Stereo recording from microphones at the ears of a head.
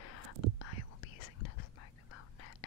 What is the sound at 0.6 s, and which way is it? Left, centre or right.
Whispering, left.